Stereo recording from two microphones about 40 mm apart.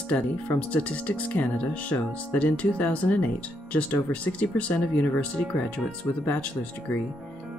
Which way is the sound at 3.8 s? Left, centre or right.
Left.